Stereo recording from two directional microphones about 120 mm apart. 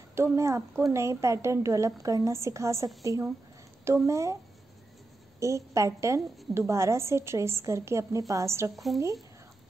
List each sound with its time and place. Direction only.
0.1 s a woman's voice: 25° right (ahead or behind)
5.4 s a woman's voice: 25° right (ahead or behind)
8.7 s speech: centre (ahead or behind)